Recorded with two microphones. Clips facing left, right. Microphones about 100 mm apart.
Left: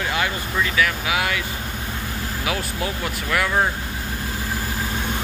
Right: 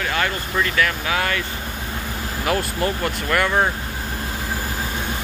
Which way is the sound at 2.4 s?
5° left (ahead or behind).